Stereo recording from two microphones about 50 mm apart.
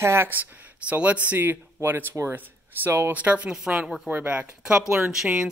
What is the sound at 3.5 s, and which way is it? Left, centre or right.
Speech, centre.